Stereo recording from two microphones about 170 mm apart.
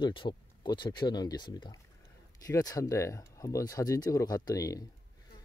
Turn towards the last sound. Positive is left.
turn(degrees=20)  # may be behind; listen again after turning